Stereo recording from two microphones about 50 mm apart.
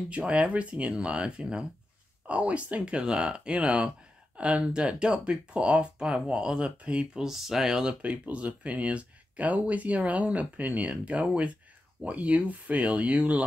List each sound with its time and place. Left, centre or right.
0.1 s speech: right
6.8 s speech: right
7.2 s speech: centre; by 13.4 s right